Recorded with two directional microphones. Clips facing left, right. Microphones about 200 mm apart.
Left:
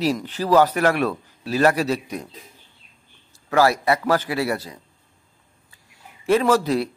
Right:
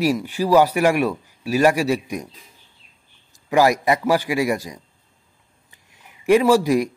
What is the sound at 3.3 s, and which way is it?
A man's voice, 15° right (ahead or behind).